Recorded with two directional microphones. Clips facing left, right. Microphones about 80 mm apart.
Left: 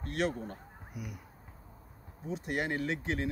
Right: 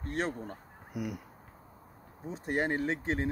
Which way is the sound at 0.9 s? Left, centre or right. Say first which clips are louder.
Right 8 dB; right.